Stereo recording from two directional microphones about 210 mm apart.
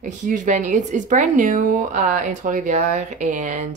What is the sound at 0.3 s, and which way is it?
Speech, 35° right (ahead or behind).